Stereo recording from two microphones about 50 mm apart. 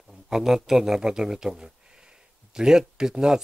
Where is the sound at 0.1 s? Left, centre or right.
Centre.